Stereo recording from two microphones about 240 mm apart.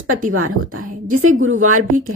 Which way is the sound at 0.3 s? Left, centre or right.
Right.